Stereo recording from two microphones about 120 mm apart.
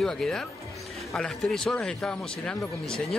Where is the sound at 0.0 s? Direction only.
5° left (ahead or behind).